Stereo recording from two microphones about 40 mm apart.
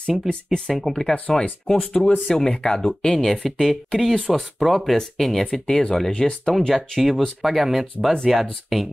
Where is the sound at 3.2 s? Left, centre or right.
Centre.